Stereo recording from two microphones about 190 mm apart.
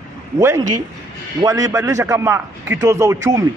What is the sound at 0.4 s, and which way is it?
A man's voice, 15° right (ahead or behind).